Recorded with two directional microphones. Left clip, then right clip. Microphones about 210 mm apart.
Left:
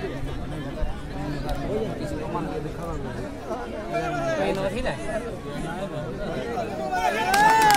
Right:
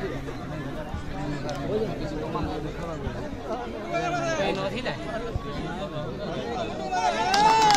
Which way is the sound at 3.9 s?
55° left (ahead or behind).